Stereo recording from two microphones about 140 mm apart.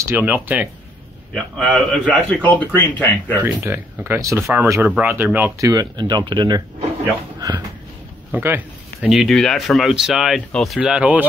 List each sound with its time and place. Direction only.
0.0 s speech: 15° right (ahead or behind)
1.3 s a man's voice: 5° left (ahead or behind)
3.4 s speech: 15° right (ahead or behind)
5.7 s speech: 30° right (ahead or behind)
7.3 s a sound: 25° right (ahead or behind)
8.3 s a sound: 15° right (ahead or behind)
9.1 s speech: centre (ahead or behind)